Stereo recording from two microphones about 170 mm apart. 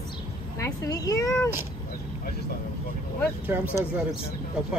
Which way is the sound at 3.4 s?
10° right (ahead or behind).